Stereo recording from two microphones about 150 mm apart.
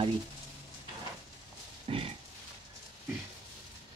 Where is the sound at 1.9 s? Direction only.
40° right (ahead or behind).